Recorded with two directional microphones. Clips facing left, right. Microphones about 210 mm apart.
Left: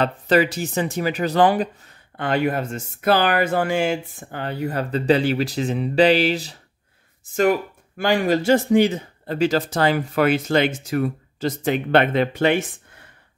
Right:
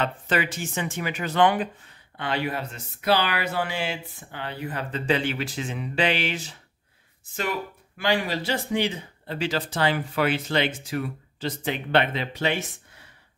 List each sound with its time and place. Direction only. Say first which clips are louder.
0.0 s speech: left 8 dB; 35° left (ahead or behind)
2.1 s speech: left 7 dB; 50° left (ahead or behind)
8.0 s speech: left 6 dB; 45° left (ahead or behind)